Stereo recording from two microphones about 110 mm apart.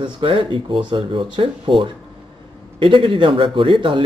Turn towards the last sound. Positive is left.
turn(degrees=-50)  # may be behind; listen again after turning